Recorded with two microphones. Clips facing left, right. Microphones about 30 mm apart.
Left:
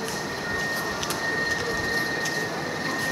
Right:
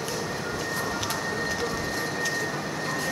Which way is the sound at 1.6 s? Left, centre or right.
Centre.